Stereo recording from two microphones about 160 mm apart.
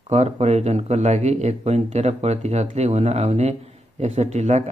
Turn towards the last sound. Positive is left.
turn(degrees=-45)  # may be behind; listen again after turning